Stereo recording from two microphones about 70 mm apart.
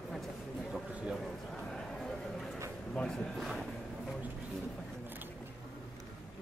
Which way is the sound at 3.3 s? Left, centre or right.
Centre.